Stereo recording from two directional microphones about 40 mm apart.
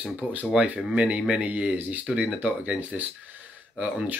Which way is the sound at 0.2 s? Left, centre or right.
Right.